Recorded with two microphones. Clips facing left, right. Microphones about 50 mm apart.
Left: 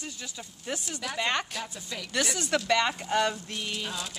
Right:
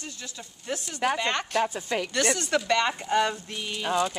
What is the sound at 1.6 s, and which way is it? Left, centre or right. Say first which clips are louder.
Speech: right 11 dB; right.